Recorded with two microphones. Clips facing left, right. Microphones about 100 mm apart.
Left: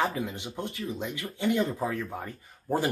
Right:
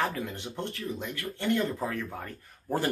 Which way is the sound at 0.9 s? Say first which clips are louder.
Left 1 dB; 15° left (ahead or behind).